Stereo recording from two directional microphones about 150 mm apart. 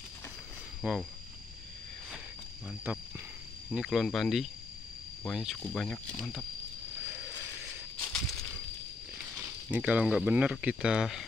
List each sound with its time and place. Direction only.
0.8 s speech: 10° right (ahead or behind)
2.9 s speech: 15° right (ahead or behind)
3.7 s speech: centre (ahead or behind)
8.0 s a sound: 20° left (ahead or behind)
9.4 s speech: 10° right (ahead or behind)